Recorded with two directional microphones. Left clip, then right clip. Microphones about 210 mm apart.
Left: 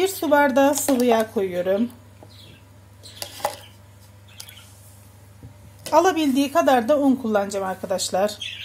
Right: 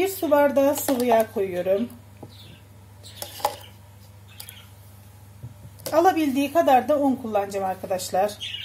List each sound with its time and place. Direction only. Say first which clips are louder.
0.0 s a sound: left 1 dB; 35° left (ahead or behind)
0.9 s speech: left 1 dB; 35° left (ahead or behind)
5.9 s speech: left 2 dB; 30° left (ahead or behind)